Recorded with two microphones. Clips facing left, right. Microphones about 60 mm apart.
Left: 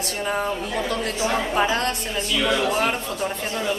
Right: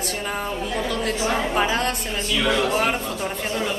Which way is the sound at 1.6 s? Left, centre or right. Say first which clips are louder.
Even; centre.